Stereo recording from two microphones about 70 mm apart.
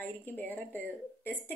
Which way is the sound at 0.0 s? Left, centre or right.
Left.